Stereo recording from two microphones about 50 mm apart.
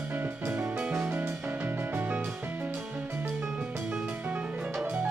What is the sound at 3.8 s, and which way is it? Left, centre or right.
Music, right.